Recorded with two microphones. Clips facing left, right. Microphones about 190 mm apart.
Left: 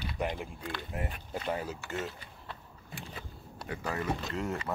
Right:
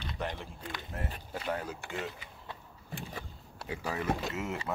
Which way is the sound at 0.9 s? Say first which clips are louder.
Left 1 dB; 15° left (ahead or behind).